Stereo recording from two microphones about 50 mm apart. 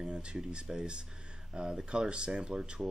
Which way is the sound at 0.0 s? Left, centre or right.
Centre.